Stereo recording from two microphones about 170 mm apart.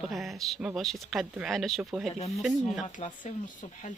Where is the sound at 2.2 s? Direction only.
40° left (ahead or behind).